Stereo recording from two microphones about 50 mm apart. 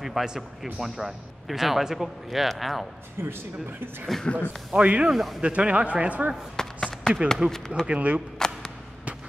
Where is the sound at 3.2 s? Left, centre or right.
Right.